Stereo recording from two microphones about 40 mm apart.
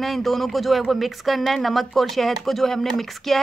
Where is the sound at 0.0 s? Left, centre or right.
Centre.